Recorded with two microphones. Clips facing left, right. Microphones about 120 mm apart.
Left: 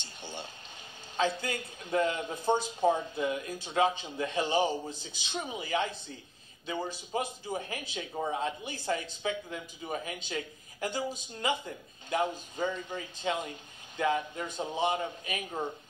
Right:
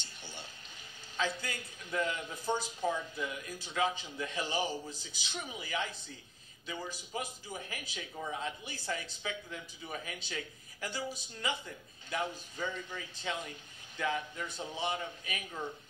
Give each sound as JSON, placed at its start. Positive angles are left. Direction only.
{"t": 0.0, "sound": "a sound", "side_deg": 20}
{"t": 1.1, "sound": "a man's voice", "side_deg": 20}
{"t": 6.6, "sound": "a man's voice", "side_deg": 55}
{"t": 6.9, "sound": "a man's voice", "side_deg": 20}